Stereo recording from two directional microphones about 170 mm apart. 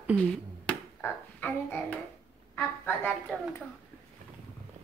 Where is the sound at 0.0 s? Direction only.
5° right (ahead or behind).